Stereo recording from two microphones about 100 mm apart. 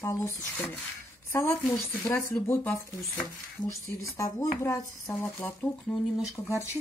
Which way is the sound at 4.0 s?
35° left (ahead or behind).